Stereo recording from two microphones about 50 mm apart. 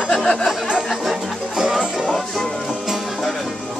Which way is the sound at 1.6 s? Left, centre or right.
Centre.